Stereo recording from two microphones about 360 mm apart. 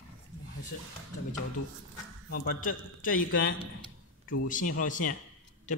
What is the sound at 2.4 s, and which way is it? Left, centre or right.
A man's voice, left.